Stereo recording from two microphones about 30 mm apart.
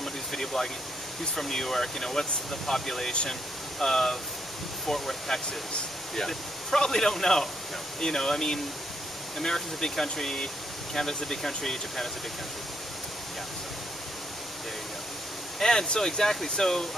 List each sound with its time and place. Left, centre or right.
0.0 s a sound: centre
1.3 s speech: centre
15.6 s speech: centre